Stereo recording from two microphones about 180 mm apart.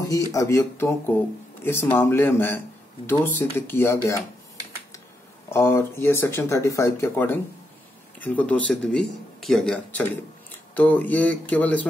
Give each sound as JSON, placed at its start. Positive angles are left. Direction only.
{"t": 0.1, "sound": "speech", "side_deg": 20}
{"t": 5.5, "sound": "speech", "side_deg": 15}